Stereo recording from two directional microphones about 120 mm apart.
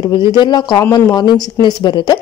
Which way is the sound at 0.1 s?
40° left (ahead or behind).